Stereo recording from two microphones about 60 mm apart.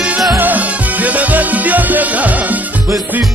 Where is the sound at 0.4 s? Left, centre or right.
Right.